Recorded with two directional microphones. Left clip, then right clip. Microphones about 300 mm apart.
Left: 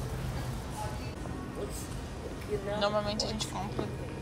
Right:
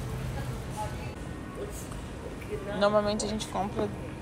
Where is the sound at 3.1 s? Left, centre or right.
Left.